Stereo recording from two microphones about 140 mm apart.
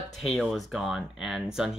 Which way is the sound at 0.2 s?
Centre (ahead or behind).